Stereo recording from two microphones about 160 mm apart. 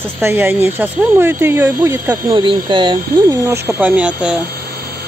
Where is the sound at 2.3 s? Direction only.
30° right (ahead or behind).